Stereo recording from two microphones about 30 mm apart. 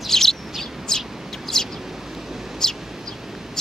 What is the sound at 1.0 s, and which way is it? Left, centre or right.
Bird, centre.